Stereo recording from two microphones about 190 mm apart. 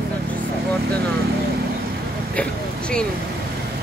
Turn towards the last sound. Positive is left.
turn(degrees=5)  # may be behind; listen again after turning